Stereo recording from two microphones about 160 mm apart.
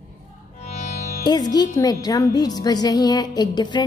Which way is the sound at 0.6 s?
40° left (ahead or behind).